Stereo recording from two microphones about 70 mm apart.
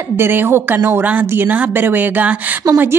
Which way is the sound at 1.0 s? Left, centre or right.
Right.